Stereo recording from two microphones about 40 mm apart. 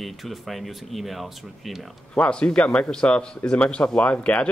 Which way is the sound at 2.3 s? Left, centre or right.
Left.